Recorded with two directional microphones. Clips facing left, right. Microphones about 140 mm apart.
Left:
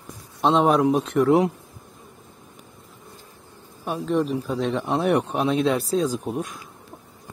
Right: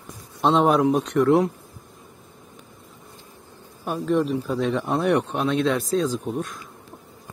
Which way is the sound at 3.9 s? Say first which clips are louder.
Right 1 dB; centre (ahead or behind).